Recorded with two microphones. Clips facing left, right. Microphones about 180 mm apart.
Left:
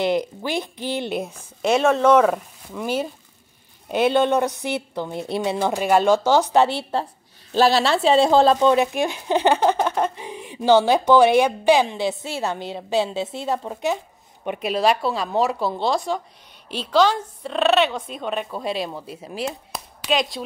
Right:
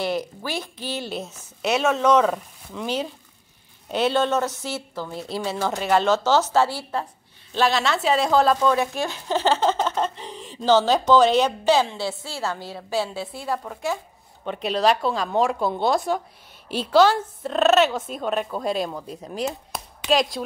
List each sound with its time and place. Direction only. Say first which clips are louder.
0.0 s speech: left 4 dB; 15° left (ahead or behind)
1.6 s speech: left 4 dB; 5° right (ahead or behind)
2.0 s speech: left 3 dB; 10° left (ahead or behind)
14.4 s speech: left 1 dB; 10° left (ahead or behind)